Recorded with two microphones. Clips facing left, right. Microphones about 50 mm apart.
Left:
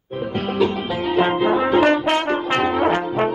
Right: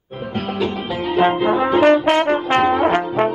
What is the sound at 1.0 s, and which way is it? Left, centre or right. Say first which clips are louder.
Brass instrument: right 2 dB; centre.